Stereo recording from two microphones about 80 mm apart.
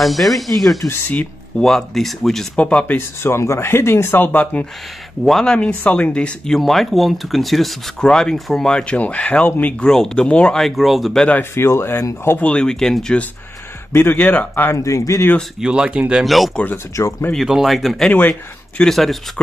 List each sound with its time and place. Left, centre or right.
0.0 s speech: centre
2.5 s speech: centre
3.2 s speech: left; by 4.6 s centre
5.2 s speech: centre
9.8 s speech: centre
11.5 s speech: left
12.3 s speech: centre
13.9 s speech: left
14.8 s speech: left
15.6 s speech: centre
16.2 s speech: centre
16.7 s speech: left
17.4 s speech: centre